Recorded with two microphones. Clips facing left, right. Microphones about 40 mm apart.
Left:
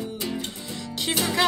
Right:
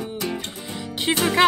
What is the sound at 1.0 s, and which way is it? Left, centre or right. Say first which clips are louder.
Music: right 5 dB; right.